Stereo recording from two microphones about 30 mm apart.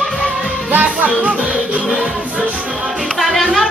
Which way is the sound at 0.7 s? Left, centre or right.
Right.